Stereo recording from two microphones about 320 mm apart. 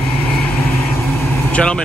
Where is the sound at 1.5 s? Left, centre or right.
Centre.